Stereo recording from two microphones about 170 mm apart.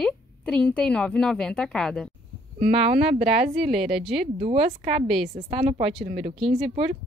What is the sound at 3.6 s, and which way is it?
Speech, centre (ahead or behind).